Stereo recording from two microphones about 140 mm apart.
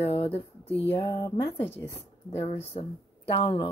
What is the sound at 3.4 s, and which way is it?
Speech, 40° left (ahead or behind).